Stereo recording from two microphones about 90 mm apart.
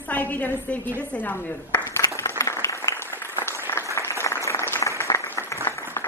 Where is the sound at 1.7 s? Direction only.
30° left (ahead or behind).